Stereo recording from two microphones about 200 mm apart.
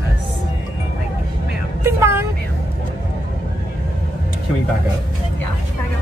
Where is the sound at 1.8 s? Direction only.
10° right (ahead or behind).